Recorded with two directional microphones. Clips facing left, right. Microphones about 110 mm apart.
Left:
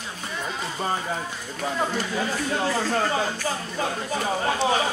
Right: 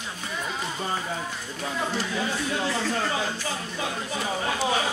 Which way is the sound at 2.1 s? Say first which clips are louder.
Left 3 dB; 35° left (ahead or behind).